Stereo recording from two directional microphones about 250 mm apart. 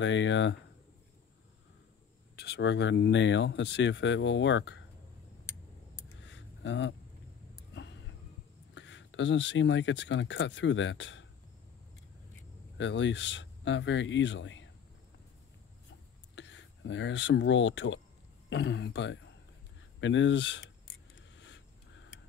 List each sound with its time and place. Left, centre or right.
0.0 s speech: left
2.3 s speech: left
6.2 s a sound: left
8.7 s speech: left
12.7 s speech: left
16.3 s speech: left
21.4 s a sound: left